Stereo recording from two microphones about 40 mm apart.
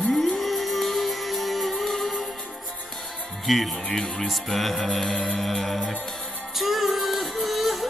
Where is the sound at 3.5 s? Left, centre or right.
Centre.